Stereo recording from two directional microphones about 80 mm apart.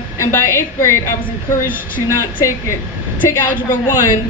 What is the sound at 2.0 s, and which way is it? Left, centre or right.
Speech, left.